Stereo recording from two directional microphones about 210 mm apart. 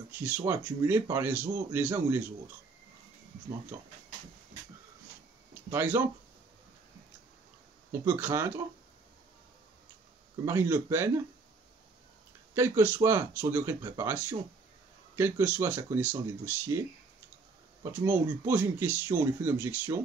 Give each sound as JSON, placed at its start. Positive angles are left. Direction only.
{"t": 0.1, "sound": "speech", "side_deg": -10}
{"t": 5.5, "sound": "speech", "side_deg": -10}
{"t": 8.0, "sound": "speech", "side_deg": -10}
{"t": 10.4, "sound": "speech", "side_deg": -10}
{"t": 12.5, "sound": "speech", "side_deg": -10}
{"t": 18.0, "sound": "speech", "side_deg": -10}